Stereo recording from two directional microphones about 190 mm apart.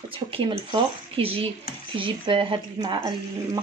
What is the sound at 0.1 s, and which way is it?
Speech, 30° right (ahead or behind).